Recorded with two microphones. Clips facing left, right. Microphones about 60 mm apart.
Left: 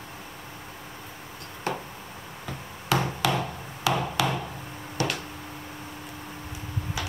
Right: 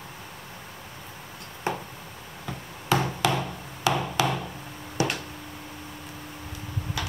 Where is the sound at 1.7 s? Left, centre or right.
Centre.